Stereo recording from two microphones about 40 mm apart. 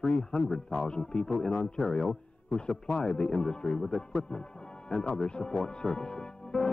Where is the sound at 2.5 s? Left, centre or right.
Centre.